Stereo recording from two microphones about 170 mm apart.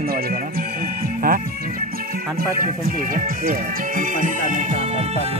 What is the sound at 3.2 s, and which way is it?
Speech, 50° right (ahead or behind).